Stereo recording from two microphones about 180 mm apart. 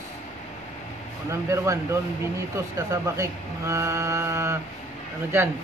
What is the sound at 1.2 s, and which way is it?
Speech, 15° right (ahead or behind).